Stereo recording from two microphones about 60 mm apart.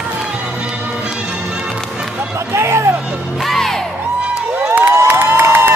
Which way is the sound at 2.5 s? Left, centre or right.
Right.